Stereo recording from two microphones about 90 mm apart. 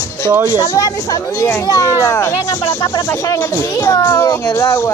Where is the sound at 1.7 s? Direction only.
35° left (ahead or behind).